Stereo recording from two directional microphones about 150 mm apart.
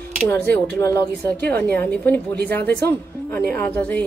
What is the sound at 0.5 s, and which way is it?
Speech, 15° left (ahead or behind).